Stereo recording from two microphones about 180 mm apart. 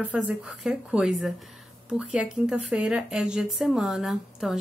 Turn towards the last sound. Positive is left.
turn(degrees=0)  # may be behind; listen again after turning